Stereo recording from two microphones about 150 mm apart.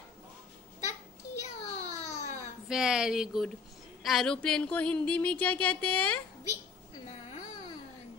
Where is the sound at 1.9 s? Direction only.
50° left (ahead or behind).